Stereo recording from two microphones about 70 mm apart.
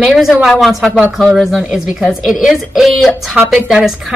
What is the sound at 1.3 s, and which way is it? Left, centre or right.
A woman's voice, centre.